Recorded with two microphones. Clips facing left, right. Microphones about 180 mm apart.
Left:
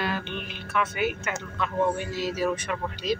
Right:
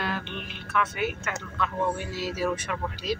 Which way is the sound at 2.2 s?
5° right (ahead or behind).